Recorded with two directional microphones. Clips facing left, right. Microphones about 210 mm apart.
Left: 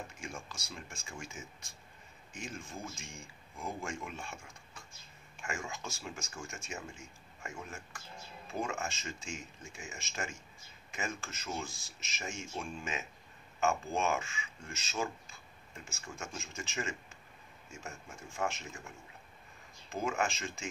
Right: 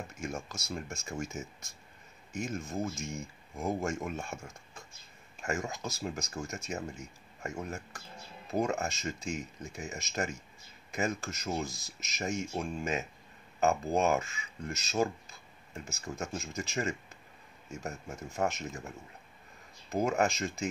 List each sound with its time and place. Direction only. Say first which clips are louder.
0.2 s speech: right 7 dB; 40° right (ahead or behind)
19.9 s speech: right 6 dB; 40° right (ahead or behind)